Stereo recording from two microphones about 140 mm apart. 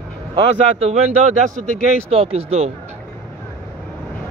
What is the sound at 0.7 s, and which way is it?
A man's voice, 45° right (ahead or behind).